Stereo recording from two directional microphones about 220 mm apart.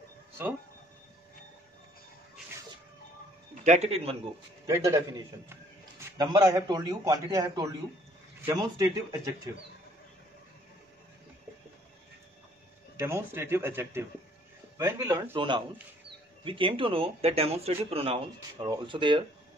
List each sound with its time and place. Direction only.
3.6 s speech: 30° right (ahead or behind)
4.6 s a man's voice: 15° right (ahead or behind)
12.9 s a man's voice: 10° right (ahead or behind)